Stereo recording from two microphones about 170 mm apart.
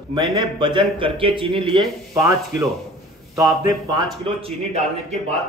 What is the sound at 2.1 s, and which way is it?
Speech, 20° right (ahead or behind).